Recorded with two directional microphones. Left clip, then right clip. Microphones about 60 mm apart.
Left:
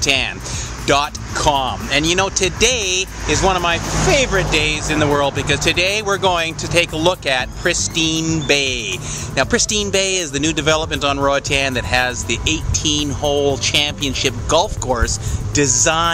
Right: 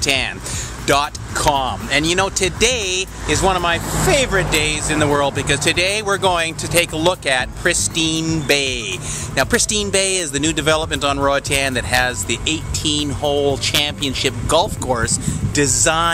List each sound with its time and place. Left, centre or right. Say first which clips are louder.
0.0 s speech: left 1 dB; centre